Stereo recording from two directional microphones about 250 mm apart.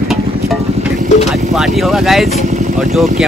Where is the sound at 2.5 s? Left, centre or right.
Right.